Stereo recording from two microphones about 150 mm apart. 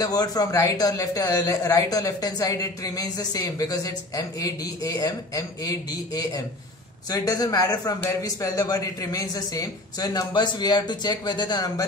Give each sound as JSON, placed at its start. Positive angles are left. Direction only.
{"t": 0.0, "sound": "a man's voice", "side_deg": 25}